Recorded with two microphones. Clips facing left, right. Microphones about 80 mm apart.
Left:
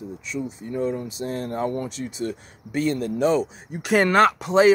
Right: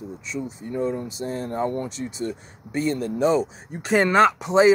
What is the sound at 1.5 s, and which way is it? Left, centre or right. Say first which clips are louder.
Speech: right 1 dB; right.